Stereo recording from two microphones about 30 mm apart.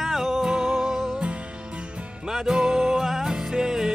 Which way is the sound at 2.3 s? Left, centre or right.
Centre.